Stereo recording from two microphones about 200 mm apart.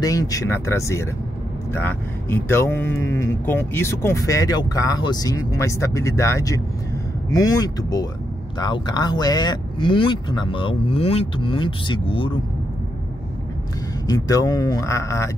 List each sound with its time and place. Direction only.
0.0 s speech: 15° left (ahead or behind)
14.0 s speech: 20° left (ahead or behind)